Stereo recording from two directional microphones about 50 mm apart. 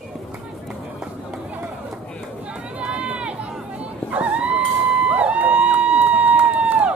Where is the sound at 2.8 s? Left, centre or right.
Right.